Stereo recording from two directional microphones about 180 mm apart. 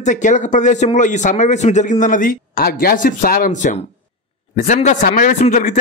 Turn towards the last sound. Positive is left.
turn(degrees=45)  # may be behind; listen again after turning